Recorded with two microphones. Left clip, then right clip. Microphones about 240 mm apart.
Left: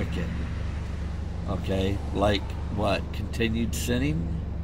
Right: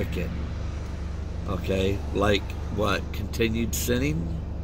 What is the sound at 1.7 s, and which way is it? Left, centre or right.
Speech, centre.